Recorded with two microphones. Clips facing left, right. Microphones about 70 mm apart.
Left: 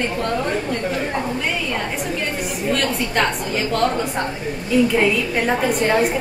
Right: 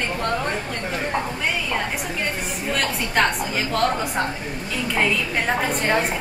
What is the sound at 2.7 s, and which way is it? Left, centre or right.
A woman's voice, centre.